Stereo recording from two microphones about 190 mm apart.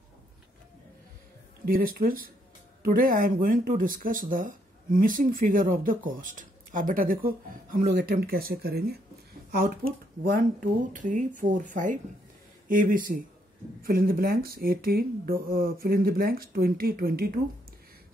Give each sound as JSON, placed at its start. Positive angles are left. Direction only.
{"t": 1.7, "sound": "speech", "side_deg": -50}